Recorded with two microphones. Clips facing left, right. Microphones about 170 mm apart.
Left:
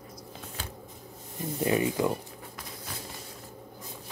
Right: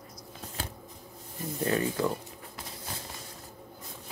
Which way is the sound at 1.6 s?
15° left (ahead or behind).